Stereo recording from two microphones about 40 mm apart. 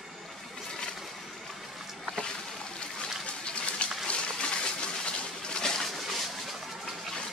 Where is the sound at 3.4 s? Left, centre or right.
Left.